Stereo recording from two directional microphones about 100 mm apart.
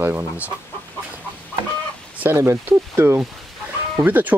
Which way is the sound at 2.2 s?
25° right (ahead or behind).